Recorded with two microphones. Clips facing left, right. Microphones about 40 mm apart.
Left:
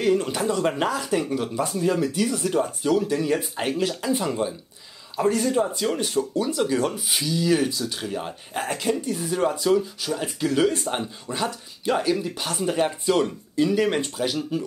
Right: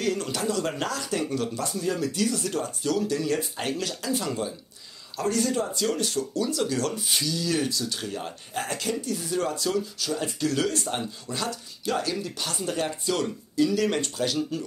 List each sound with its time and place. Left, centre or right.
0.0 s speech: left